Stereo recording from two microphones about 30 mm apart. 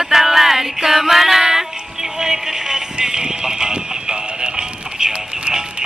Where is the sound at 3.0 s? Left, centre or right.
Right.